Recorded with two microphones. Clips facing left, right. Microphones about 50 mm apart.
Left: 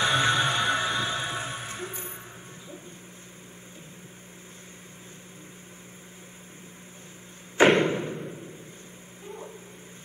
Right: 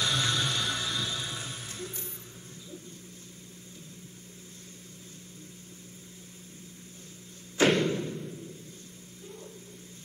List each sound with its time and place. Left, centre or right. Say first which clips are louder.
0.0 s music: left 6 dB; left
7.5 s thump: left 5 dB; left